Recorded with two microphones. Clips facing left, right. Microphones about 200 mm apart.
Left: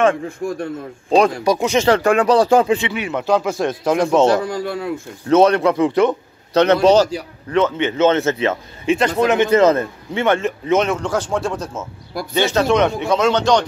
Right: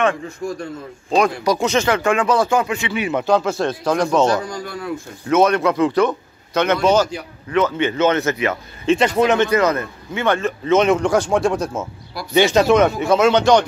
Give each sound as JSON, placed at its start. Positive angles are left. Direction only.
{"t": 0.1, "sound": "a man's voice", "side_deg": 55}
{"t": 1.1, "sound": "a man's voice", "side_deg": 30}
{"t": 1.6, "sound": "a man's voice", "side_deg": 15}
{"t": 1.9, "sound": "speech", "side_deg": 40}
{"t": 2.9, "sound": "a man's voice", "side_deg": 0}
{"t": 6.5, "sound": "speech", "side_deg": 35}
{"t": 7.5, "sound": "a man's voice", "side_deg": 25}
{"t": 8.9, "sound": "speech", "side_deg": 0}
{"t": 9.5, "sound": "a man's voice", "side_deg": 25}
{"t": 10.9, "sound": "speech", "side_deg": -15}
{"t": 12.7, "sound": "speech", "side_deg": -5}